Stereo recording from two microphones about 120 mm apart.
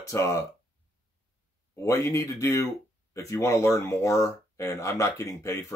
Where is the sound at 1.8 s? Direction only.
25° left (ahead or behind).